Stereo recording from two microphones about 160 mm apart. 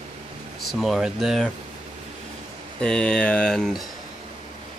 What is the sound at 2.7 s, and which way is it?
Speech, 5° left (ahead or behind).